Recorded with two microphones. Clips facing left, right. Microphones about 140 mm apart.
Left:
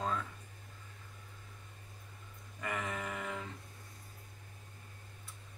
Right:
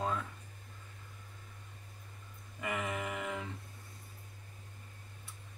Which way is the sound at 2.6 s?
15° right (ahead or behind).